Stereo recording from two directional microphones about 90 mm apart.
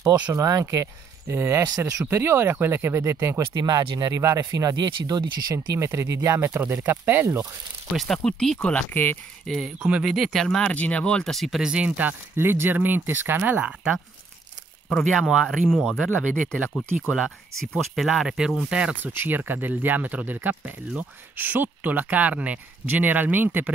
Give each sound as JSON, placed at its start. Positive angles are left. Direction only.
{"t": 0.3, "sound": "speech", "side_deg": -35}
{"t": 3.5, "sound": "speech", "side_deg": -55}
{"t": 5.8, "sound": "speech", "side_deg": -30}
{"t": 8.0, "sound": "speech", "side_deg": 5}
{"t": 9.5, "sound": "speech", "side_deg": -5}
{"t": 11.7, "sound": "speech", "side_deg": -15}
{"t": 14.9, "sound": "speech", "side_deg": 5}
{"t": 17.0, "sound": "speech", "side_deg": 0}
{"t": 19.1, "sound": "speech", "side_deg": -20}